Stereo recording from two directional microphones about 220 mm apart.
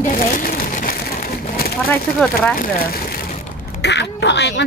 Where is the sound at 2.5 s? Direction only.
40° left (ahead or behind).